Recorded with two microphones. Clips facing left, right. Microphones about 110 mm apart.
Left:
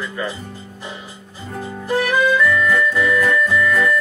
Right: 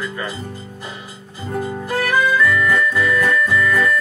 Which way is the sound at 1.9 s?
20° left (ahead or behind).